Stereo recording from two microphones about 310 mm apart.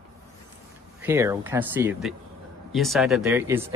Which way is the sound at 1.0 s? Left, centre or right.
Centre.